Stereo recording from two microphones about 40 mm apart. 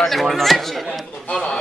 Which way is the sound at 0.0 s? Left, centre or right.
Centre.